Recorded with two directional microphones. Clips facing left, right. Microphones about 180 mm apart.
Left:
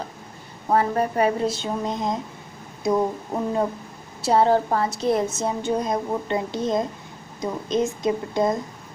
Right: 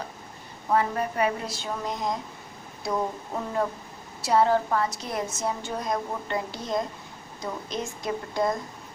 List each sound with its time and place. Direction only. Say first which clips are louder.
0.7 s a woman's voice: left 4 dB; 35° left (ahead or behind); by 8.5 s 20° left (ahead or behind)